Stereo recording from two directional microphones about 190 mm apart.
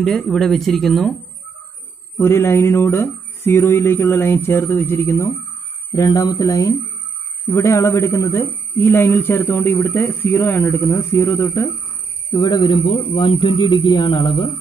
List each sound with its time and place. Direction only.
0.0 s speech: centre (ahead or behind)
2.1 s a man's voice: 15° left (ahead or behind)